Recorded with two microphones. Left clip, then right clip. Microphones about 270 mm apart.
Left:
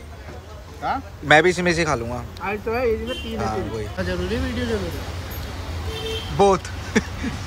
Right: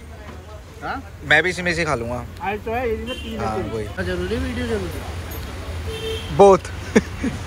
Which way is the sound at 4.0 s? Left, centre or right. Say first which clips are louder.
Even; left.